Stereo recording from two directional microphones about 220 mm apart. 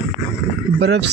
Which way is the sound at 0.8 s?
50° right (ahead or behind).